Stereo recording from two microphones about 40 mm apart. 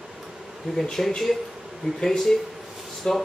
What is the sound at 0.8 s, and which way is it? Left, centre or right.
Speech, centre.